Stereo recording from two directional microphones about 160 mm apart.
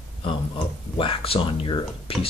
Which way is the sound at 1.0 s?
35° left (ahead or behind).